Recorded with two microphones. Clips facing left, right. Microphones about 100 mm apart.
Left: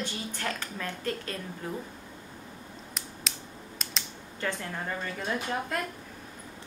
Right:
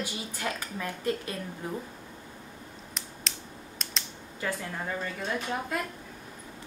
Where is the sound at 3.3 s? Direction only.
5° left (ahead or behind).